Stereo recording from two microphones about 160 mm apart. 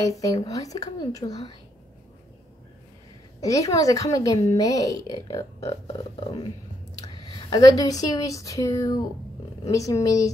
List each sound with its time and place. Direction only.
0.0 s speech: 20° left (ahead or behind)
3.3 s speech: 20° left (ahead or behind)
7.2 s a woman's voice: 25° left (ahead or behind)